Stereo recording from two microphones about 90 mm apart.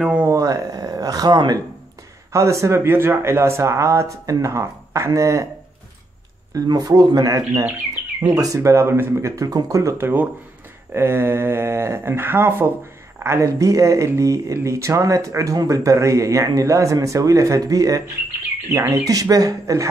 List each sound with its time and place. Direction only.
0.0 s speech: 15° right (ahead or behind)
0.3 s a sound: 35° right (ahead or behind)
2.3 s speech: 35° right (ahead or behind)
6.5 s speech: 40° right (ahead or behind)